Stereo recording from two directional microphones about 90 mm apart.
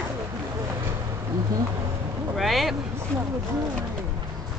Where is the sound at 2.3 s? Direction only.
Centre (ahead or behind).